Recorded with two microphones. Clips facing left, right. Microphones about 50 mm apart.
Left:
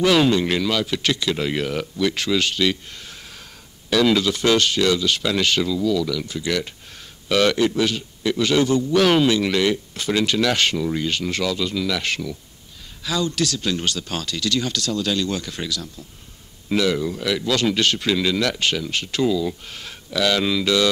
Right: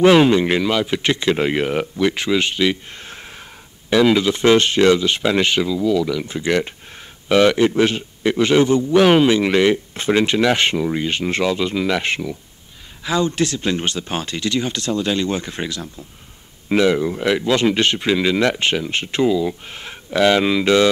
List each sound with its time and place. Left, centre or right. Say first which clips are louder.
0.0 s a man's voice: right 5 dB; right
3.0 s a sound: right 4 dB; right
3.9 s a man's voice: right 3 dB; right